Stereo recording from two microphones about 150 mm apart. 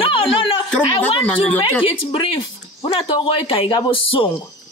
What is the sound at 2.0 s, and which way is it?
Speech, 35° left (ahead or behind).